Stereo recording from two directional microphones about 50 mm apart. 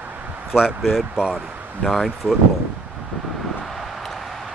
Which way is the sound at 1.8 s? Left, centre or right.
Centre.